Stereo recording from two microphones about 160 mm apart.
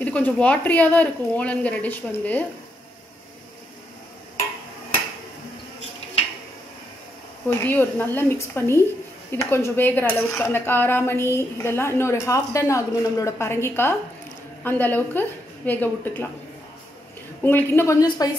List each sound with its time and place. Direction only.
0.0 s a woman's voice: 10° left (ahead or behind)
7.4 s a woman's voice: 15° left (ahead or behind)
17.4 s a woman's voice: 15° left (ahead or behind)
18.0 s a woman's voice: 30° left (ahead or behind)